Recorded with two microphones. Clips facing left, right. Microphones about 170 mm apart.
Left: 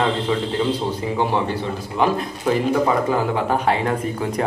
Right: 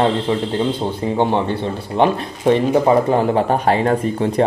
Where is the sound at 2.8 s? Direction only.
35° right (ahead or behind).